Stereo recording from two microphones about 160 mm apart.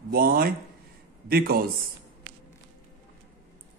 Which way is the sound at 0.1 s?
65° right (ahead or behind).